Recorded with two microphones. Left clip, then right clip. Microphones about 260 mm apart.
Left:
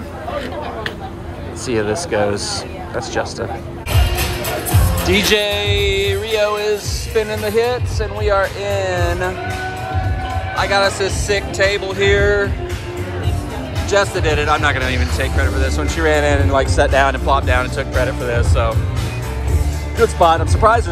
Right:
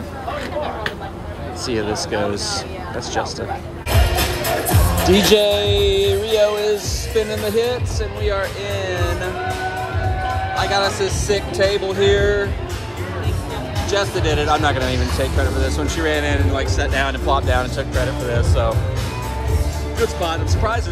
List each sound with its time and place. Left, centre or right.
1.7 s speech: centre
4.1 s music: right
5.1 s speech: centre
10.6 s speech: centre
13.8 s speech: centre
20.0 s speech: centre